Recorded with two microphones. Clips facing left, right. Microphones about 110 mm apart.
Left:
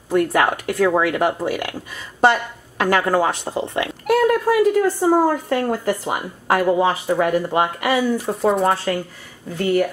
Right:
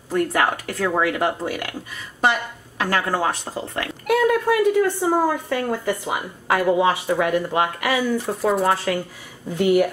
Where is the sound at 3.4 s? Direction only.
20° left (ahead or behind).